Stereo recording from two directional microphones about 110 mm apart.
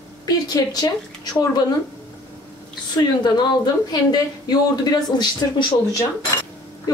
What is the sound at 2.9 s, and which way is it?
A woman's voice, 40° left (ahead or behind).